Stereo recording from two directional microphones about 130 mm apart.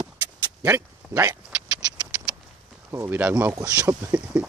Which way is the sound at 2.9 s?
15° right (ahead or behind).